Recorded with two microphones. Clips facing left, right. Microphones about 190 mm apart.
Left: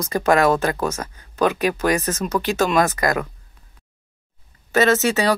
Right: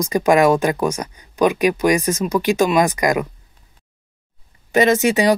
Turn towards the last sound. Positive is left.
turn(degrees=-15)  # may be behind; listen again after turning